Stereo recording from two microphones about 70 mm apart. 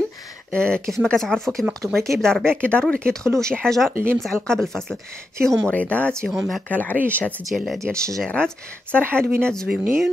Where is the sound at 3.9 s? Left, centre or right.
Right.